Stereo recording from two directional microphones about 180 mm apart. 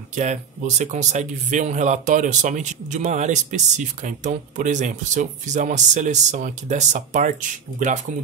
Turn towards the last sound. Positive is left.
turn(degrees=-45)  # may be behind; listen again after turning